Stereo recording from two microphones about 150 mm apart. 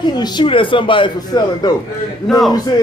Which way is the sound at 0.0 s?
30° left (ahead or behind).